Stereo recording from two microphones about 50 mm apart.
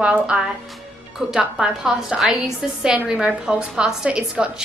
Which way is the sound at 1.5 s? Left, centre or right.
Centre.